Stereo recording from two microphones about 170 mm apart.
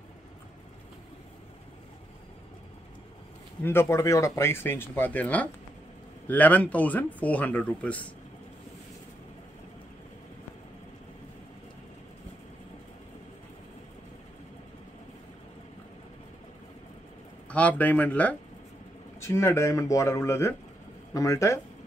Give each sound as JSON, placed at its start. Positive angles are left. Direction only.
{"t": 3.6, "sound": "speech", "side_deg": 15}
{"t": 17.5, "sound": "speech", "side_deg": 10}